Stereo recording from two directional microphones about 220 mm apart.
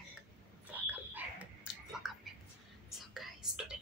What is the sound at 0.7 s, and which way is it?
Whispering, 5° right (ahead or behind).